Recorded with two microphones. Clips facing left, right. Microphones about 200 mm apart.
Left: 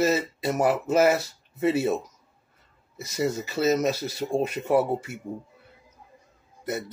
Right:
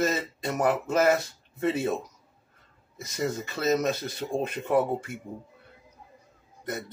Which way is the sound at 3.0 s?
5° left (ahead or behind).